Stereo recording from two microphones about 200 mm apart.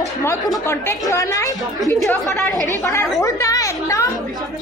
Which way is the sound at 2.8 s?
15° left (ahead or behind).